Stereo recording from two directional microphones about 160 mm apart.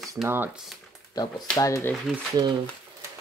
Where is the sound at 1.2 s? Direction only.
25° left (ahead or behind).